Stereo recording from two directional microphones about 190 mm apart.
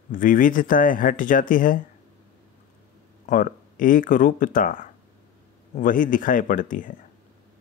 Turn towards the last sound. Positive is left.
turn(degrees=45)  # may be behind; listen again after turning